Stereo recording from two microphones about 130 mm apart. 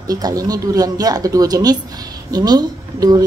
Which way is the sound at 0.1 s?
30° right (ahead or behind).